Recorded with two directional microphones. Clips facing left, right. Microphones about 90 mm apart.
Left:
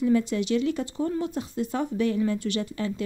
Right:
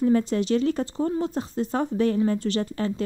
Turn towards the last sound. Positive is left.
turn(degrees=-40)  # may be behind; listen again after turning